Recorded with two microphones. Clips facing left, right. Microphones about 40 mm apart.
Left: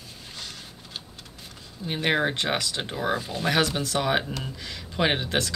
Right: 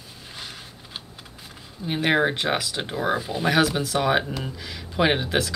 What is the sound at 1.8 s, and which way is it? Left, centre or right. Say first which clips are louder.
Speech: right 3 dB; centre.